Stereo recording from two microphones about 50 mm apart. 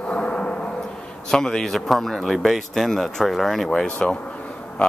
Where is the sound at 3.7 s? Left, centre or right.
Centre.